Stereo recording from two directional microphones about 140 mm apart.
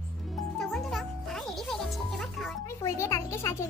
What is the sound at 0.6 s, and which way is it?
Music, centre (ahead or behind).